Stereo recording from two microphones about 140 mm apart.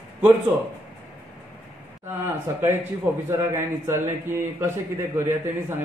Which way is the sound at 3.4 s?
20° right (ahead or behind).